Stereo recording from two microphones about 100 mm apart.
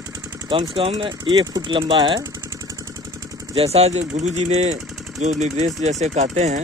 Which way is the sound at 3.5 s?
90° right.